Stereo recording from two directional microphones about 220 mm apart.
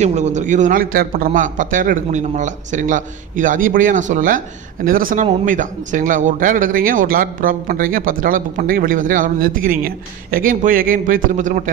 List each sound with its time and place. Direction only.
0.0 s speech: 30° right (ahead or behind)